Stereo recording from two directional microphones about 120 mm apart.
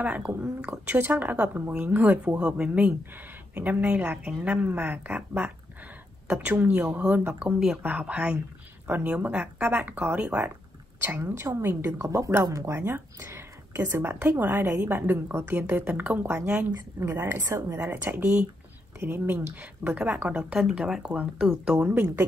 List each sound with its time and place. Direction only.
0.0 s speech: 10° right (ahead or behind)
7.5 s speech: 5° right (ahead or behind)
7.8 s speech: 15° right (ahead or behind)
16.3 s speech: 20° right (ahead or behind)
17.8 s speech: 15° right (ahead or behind)